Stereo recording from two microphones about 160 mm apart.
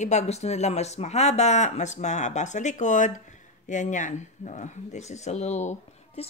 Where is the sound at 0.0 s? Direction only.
45° left (ahead or behind).